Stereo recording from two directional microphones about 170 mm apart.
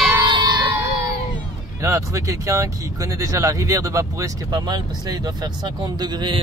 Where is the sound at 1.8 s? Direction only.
20° right (ahead or behind).